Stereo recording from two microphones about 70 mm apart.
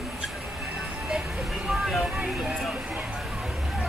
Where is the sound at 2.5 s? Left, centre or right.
Centre.